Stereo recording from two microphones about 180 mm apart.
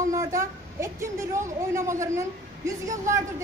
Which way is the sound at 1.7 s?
15° right (ahead or behind).